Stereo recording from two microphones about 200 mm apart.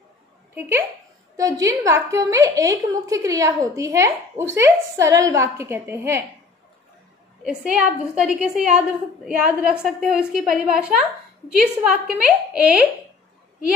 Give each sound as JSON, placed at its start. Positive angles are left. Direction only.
{"t": 0.6, "sound": "a woman's voice", "side_deg": -10}
{"t": 7.4, "sound": "a woman's voice", "side_deg": -5}